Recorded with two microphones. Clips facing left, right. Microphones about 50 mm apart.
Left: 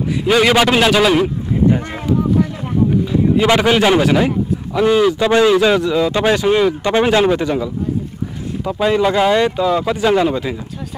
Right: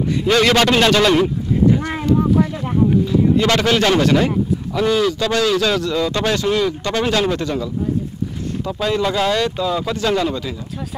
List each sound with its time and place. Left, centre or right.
0.2 s a man's voice: centre
2.0 s a sound: centre
3.1 s a man's voice: centre